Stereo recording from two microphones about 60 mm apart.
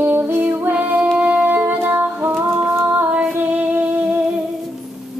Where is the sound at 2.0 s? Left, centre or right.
Right.